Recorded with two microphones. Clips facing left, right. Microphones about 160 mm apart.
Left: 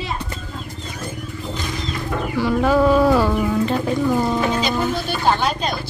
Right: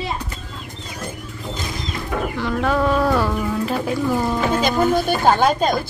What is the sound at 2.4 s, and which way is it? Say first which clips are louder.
Speech: left 5 dB; 5° left (ahead or behind).